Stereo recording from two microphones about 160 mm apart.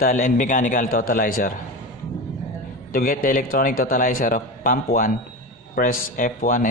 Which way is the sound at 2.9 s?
60° left (ahead or behind).